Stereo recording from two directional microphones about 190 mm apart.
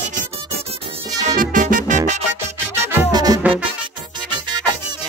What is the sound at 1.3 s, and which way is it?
Music, 45° right (ahead or behind).